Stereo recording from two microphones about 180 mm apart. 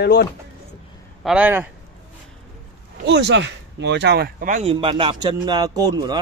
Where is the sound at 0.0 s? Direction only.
65° left (ahead or behind).